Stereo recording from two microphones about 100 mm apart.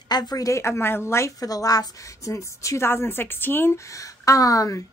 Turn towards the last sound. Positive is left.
turn(degrees=35)  # may be behind; listen again after turning